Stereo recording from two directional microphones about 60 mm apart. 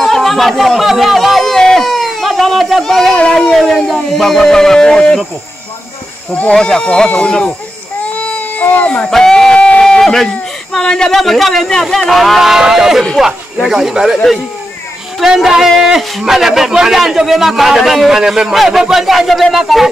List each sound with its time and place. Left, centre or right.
0.0 s speech: centre
6.5 s speech: centre
8.2 s baby cry: left
9.1 s a man's voice: centre
15.1 s a man's voice: centre